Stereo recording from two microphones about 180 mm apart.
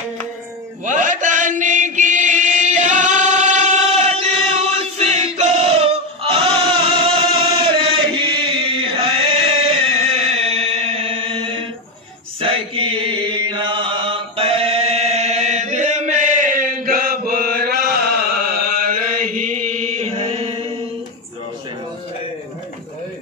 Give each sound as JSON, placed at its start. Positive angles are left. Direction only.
{"t": 0.8, "sound": "mantra", "side_deg": -45}
{"t": 12.4, "sound": "chant", "side_deg": -30}